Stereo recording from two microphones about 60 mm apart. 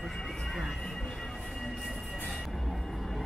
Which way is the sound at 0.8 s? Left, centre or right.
Centre.